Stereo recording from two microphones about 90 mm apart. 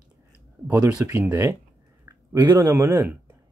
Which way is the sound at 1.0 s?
25° right (ahead or behind).